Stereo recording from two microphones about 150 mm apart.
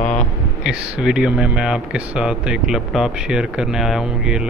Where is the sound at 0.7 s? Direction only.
5° right (ahead or behind).